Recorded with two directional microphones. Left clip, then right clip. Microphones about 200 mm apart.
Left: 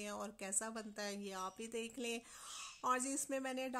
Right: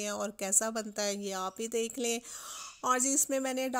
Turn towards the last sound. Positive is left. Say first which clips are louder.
# right 10 dB
turn(degrees=-30)  # may be behind; listen again after turning